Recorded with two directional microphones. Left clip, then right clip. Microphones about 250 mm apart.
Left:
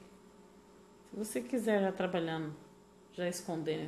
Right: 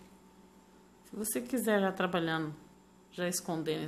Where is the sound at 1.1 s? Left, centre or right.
Centre.